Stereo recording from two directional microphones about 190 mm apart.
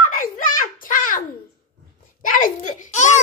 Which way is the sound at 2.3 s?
40° left (ahead or behind).